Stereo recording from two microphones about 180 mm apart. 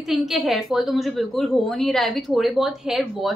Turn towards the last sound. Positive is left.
turn(degrees=0)  # may be behind; listen again after turning